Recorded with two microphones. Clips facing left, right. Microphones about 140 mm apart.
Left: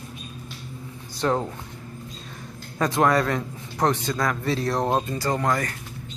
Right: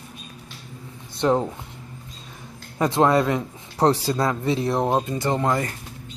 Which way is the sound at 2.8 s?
25° right (ahead or behind).